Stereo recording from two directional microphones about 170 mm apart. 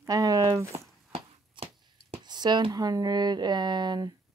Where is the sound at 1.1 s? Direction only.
35° right (ahead or behind).